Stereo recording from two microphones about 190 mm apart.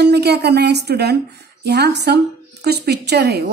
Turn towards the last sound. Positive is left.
turn(degrees=-60)  # may be behind; listen again after turning